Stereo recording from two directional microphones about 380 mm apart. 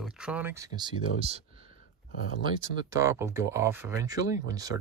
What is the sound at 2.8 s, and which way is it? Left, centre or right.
Speech, centre.